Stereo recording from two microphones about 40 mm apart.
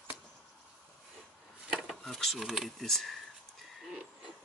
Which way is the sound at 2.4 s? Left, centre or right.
Centre.